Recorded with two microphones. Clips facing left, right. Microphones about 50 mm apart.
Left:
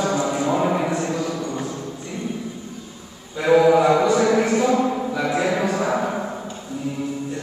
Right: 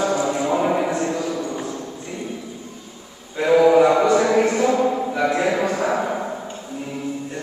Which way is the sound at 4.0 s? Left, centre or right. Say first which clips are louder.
Right 1 dB; centre.